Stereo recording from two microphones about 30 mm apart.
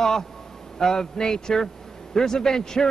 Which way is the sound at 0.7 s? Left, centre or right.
Centre.